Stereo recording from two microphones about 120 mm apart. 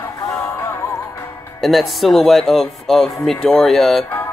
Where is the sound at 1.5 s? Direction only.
Centre (ahead or behind).